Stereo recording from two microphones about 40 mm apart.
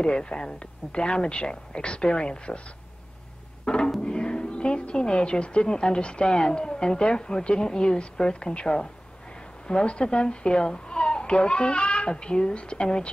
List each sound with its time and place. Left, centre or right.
0.0 s a woman's voice: left
3.6 s music: centre
4.0 s a woman's voice: left